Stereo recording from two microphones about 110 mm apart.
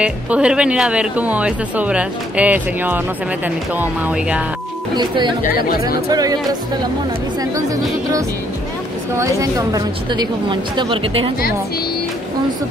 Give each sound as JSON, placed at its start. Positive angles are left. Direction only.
{"t": 0.0, "sound": "speech", "side_deg": -10}
{"t": 4.9, "sound": "a woman's voice", "side_deg": -45}
{"t": 9.1, "sound": "a woman's voice", "side_deg": -30}